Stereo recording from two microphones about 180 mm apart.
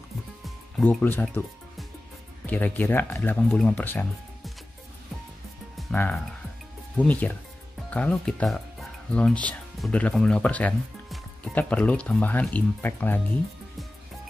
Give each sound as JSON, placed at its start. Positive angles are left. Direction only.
{"t": 0.7, "sound": "speech", "side_deg": 5}
{"t": 5.8, "sound": "speech", "side_deg": 5}